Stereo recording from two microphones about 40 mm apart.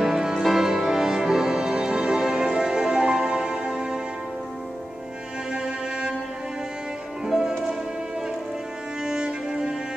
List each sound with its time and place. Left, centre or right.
0.0 s music: centre
5.5 s music: right
7.2 s music: centre
9.0 s music: centre